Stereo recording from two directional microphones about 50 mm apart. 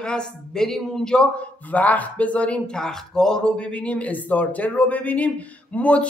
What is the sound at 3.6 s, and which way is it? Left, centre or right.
Speech, left.